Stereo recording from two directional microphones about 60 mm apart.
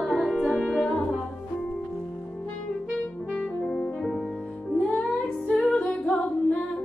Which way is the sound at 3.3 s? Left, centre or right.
Centre.